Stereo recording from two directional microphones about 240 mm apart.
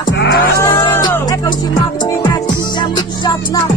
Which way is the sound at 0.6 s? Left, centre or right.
Centre.